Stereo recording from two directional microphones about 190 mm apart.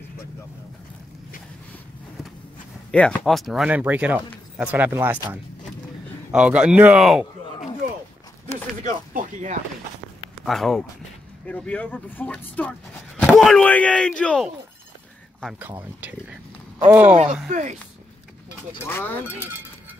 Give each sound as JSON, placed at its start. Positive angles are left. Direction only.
{"t": 2.9, "sound": "speech", "side_deg": 5}
{"t": 6.3, "sound": "speech", "side_deg": -5}
{"t": 8.8, "sound": "a sound", "side_deg": -40}
{"t": 10.4, "sound": "speech", "side_deg": 0}
{"t": 16.0, "sound": "speech", "side_deg": -10}
{"t": 17.1, "sound": "speech", "side_deg": -35}
{"t": 18.9, "sound": "speech", "side_deg": 10}